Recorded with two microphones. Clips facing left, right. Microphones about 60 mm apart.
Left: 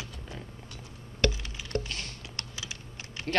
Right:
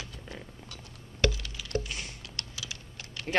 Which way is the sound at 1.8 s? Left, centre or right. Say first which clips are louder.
Left 1 dB; centre.